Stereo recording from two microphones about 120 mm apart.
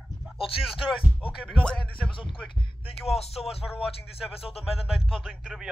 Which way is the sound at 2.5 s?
45° left (ahead or behind).